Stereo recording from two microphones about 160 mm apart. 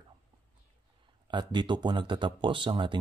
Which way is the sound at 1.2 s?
30° right (ahead or behind).